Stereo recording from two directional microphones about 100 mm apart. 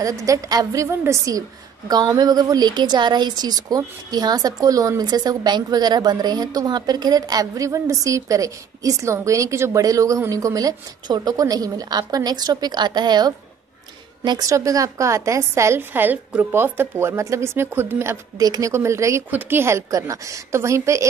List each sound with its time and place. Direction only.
0.0 s a woman's voice: 35° right (ahead or behind)
14.4 s a woman's voice: 35° right (ahead or behind)
18.4 s a woman's voice: 40° right (ahead or behind)
18.7 s a woman's voice: 30° right (ahead or behind)